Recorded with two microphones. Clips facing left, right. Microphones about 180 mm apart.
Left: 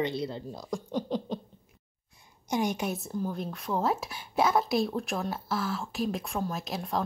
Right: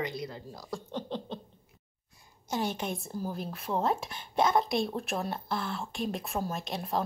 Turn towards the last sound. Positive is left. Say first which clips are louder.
# even
turn(degrees=0)  # may be behind; listen again after turning